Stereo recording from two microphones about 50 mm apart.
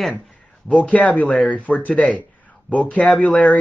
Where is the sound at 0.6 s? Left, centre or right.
Left.